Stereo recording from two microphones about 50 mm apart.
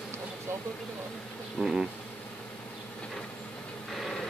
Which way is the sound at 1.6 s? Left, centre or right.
Centre.